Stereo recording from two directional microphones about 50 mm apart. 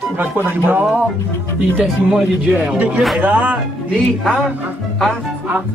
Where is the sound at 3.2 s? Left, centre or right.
Right.